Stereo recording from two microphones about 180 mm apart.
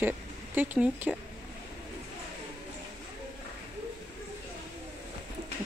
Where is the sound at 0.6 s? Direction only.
10° right (ahead or behind).